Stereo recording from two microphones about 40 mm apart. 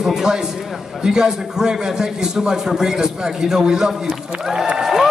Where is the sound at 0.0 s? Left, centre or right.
Centre.